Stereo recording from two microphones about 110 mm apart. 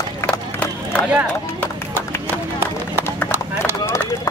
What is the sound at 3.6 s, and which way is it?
Run, 15° left (ahead or behind).